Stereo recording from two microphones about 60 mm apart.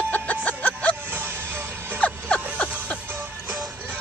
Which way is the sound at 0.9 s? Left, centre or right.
Right.